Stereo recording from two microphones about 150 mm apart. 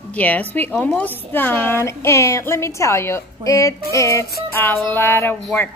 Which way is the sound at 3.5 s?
20° left (ahead or behind).